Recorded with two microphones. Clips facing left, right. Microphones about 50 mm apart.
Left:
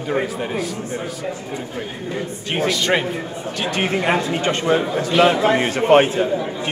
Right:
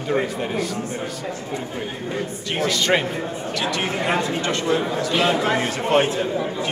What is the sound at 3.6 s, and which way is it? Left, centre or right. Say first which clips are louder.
Speech: left 4 dB; left.